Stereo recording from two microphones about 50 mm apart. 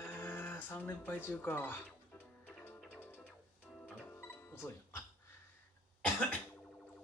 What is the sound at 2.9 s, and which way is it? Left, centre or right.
Music, left.